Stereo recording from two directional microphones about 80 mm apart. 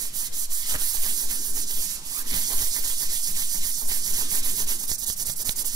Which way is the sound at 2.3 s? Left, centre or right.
Right.